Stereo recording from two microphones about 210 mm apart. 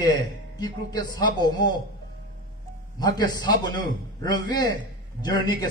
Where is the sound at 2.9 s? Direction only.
20° left (ahead or behind).